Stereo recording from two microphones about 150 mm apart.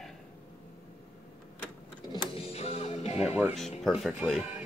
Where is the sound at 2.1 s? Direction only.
40° left (ahead or behind).